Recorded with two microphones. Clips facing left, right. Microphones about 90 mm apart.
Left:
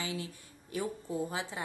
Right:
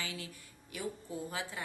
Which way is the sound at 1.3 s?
25° left (ahead or behind).